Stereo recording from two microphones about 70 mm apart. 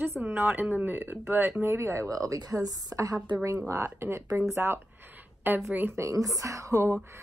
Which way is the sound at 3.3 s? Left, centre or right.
Right.